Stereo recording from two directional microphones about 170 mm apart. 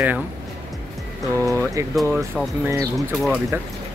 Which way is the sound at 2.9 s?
Centre (ahead or behind).